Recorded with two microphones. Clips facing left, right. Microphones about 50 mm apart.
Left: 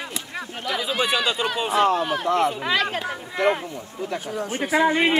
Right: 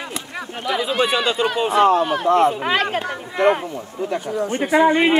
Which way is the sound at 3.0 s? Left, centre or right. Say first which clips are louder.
Right 4 dB; centre.